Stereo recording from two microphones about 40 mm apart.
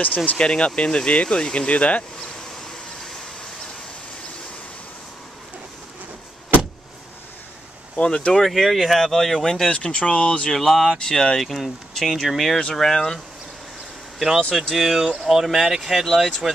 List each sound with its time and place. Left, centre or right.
0.0 s speech: left
0.4 s speech: left
7.9 s speech: left
8.3 s speech: centre
9.8 s speech: left
10.5 s speech: centre
11.4 s speech: centre
12.7 s speech: centre
14.5 s speech: centre
16.1 s speech: centre